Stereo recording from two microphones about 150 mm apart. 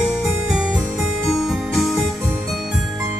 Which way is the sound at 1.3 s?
Centre (ahead or behind).